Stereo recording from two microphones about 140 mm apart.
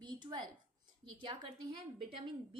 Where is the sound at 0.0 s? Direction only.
35° right (ahead or behind).